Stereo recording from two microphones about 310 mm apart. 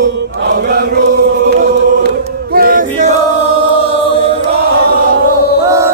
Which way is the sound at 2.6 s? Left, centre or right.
Right.